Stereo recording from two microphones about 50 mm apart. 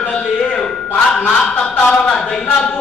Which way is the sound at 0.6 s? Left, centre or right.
Left.